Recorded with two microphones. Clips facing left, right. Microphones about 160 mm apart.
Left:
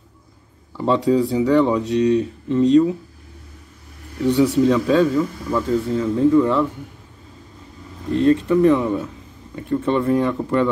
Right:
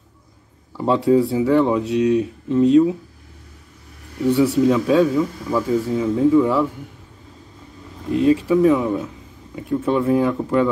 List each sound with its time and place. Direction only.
0.7 s speech: 5° right (ahead or behind)
4.2 s speech: 5° right (ahead or behind)
8.1 s speech: 10° right (ahead or behind)